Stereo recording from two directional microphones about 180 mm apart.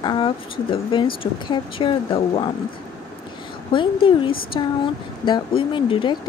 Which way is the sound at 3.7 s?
30° left (ahead or behind).